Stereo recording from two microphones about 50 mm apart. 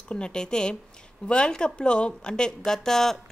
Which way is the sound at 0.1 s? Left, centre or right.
Centre.